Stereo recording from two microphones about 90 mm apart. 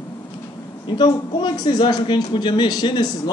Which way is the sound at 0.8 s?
60° left (ahead or behind).